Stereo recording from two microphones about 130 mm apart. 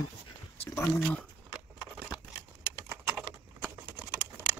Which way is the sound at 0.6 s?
15° left (ahead or behind).